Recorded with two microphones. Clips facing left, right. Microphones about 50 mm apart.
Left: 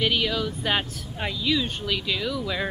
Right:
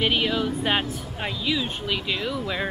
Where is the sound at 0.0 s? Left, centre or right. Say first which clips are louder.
Right 1 dB; centre.